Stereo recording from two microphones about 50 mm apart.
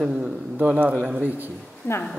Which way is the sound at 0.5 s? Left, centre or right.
Right.